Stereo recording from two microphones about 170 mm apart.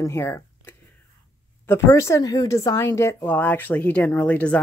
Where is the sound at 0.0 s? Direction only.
15° left (ahead or behind).